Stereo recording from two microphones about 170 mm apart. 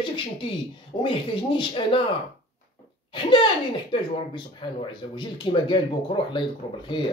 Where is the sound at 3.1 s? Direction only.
25° left (ahead or behind).